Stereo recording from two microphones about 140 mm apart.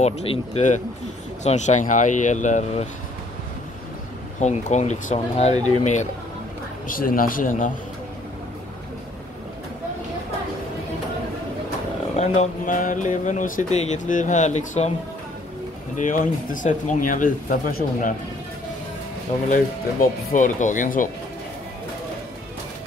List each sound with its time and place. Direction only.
0.0 s speech: 50° left (ahead or behind)
4.4 s speech: 55° left (ahead or behind)
6.9 s a man's voice: 85° left
12.2 s speech: 60° left (ahead or behind)
16.0 s speech: 70° left (ahead or behind)
19.5 s speech: 65° left (ahead or behind)